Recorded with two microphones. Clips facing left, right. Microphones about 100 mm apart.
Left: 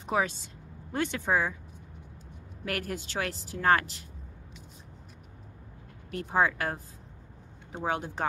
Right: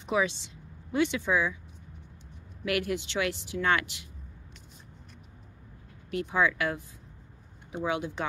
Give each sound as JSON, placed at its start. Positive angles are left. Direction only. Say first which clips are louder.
{"t": 0.0, "sound": "speech", "louder": "right 1 dB", "side_deg": 45}
{"t": 2.6, "sound": "a woman's voice", "louder": "right 5 dB", "side_deg": 40}
{"t": 6.0, "sound": "a woman's voice", "louder": "even", "side_deg": 40}